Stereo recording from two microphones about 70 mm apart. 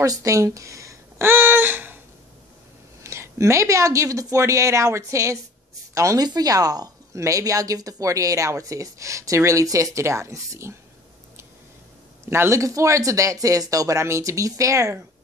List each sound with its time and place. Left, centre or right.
0.0 s speech: right
1.2 s a sound: right
3.0 s speech: right
6.2 s speech: right
12.3 s speech: right